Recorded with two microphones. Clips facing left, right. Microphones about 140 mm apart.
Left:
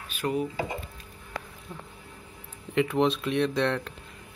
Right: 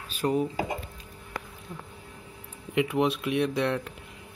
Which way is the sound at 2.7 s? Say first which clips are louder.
Left 1 dB; 10° right (ahead or behind).